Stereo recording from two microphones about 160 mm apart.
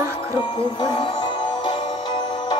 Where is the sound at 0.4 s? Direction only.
30° left (ahead or behind).